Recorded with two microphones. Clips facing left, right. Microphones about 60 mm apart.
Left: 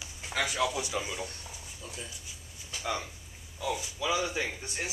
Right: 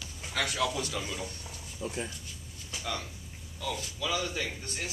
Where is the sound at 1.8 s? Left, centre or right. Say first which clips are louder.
Right 9 dB; right.